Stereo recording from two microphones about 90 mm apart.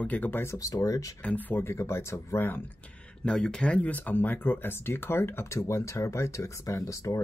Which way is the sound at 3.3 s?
10° left (ahead or behind).